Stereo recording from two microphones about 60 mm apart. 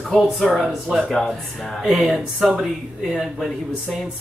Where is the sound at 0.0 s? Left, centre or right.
Centre.